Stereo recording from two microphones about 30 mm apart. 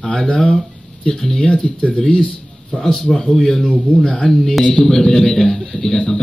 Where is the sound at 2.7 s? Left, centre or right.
Centre.